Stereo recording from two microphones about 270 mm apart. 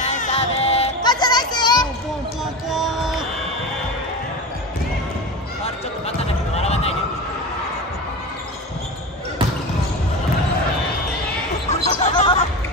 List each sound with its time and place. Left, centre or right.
0.1 s music: left
2.7 s music: centre
6.0 s basketball bounce: left
11.7 s a sound: left